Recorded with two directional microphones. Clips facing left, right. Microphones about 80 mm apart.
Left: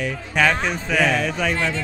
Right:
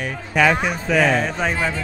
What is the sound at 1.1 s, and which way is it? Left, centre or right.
Speech, right.